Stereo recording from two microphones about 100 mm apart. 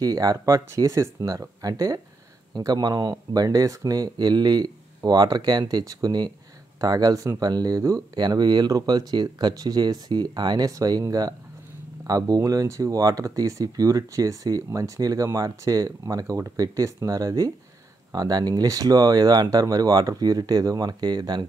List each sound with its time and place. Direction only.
0.0 s speech: 40° right (ahead or behind)
8.2 s speech: 45° right (ahead or behind)